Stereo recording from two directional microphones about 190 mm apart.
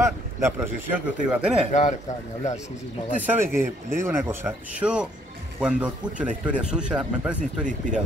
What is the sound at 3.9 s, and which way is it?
Speech, 15° right (ahead or behind).